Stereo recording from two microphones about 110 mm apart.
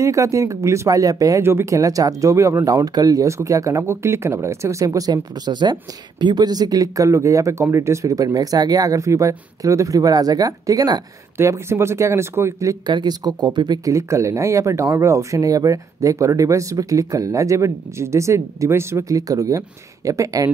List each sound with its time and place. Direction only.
0.0 s speech: 30° right (ahead or behind)
11.3 s speech: 25° right (ahead or behind)
12.8 s speech: 40° right (ahead or behind)
13.8 s speech: 30° right (ahead or behind)